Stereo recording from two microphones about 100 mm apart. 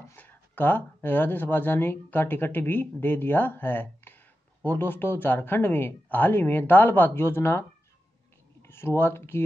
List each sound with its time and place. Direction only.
0.1 s speech: 20° left (ahead or behind)
8.6 s speech: 25° left (ahead or behind)